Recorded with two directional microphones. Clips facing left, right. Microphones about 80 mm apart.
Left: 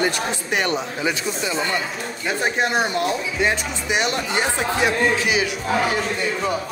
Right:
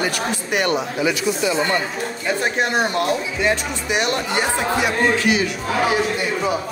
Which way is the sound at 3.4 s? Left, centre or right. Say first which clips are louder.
Even; left.